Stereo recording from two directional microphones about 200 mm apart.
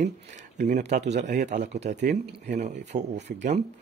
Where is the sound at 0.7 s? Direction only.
35° right (ahead or behind).